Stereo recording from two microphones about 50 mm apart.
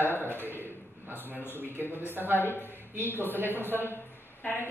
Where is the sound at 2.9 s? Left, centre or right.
Right.